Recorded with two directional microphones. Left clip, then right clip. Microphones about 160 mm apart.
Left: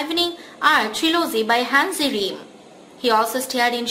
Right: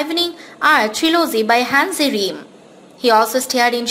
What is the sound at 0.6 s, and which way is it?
A woman's voice, 30° right (ahead or behind).